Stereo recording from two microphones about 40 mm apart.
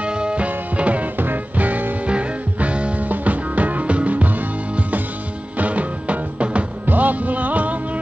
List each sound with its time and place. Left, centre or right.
0.0 s music: right
1.1 s music: right
2.0 s music: right
6.9 s music: right